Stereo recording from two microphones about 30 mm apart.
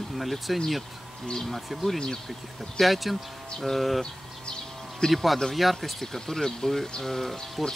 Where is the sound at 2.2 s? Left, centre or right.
Centre.